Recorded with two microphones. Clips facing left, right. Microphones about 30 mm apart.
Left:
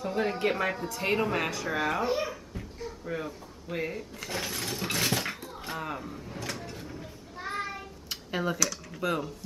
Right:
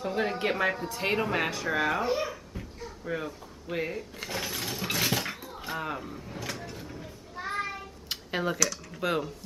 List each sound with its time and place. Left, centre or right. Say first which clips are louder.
0.0 s a woman's voice: even; centre
3.1 s a sound: right 3 dB; centre
8.5 s speech: right 1 dB; centre